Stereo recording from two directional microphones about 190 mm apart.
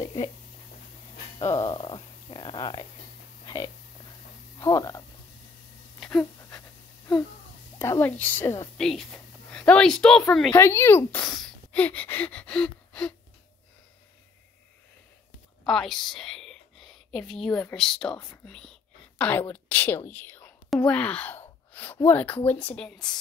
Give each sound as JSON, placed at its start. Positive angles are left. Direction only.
{"t": 0.0, "sound": "a sound", "side_deg": 20}
{"t": 1.6, "sound": "speech", "side_deg": 25}
{"t": 3.4, "sound": "a sound", "side_deg": 20}
{"t": 4.6, "sound": "speech", "side_deg": 20}
{"t": 5.9, "sound": "a sound", "side_deg": 5}
{"t": 7.8, "sound": "a woman's voice", "side_deg": 10}
{"t": 10.5, "sound": "speech", "side_deg": 15}
{"t": 15.6, "sound": "whispering", "side_deg": 0}
{"t": 17.3, "sound": "speech", "side_deg": 5}